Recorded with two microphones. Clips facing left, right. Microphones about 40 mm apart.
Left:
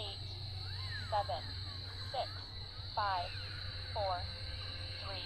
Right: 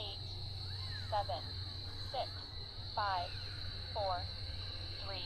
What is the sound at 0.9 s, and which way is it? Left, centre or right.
Music, centre.